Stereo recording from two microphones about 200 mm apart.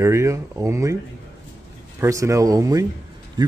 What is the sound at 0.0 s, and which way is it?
Speech, 15° right (ahead or behind).